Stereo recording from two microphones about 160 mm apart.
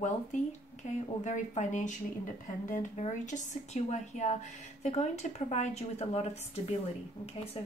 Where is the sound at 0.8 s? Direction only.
50° left (ahead or behind).